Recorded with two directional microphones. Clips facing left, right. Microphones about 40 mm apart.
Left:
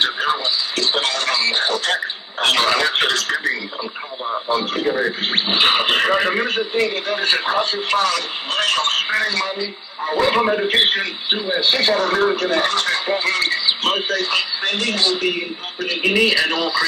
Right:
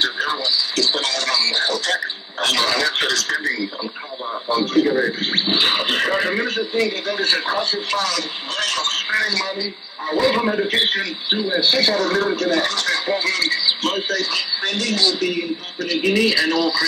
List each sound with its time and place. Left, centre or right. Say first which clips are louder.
0.0 s radio: left 2 dB; left
4.3 s speech: even; left
6.4 s a man's voice: left 1 dB; left